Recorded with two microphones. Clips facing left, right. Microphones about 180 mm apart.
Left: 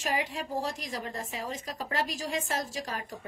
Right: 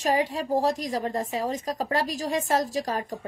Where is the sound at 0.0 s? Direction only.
40° right (ahead or behind).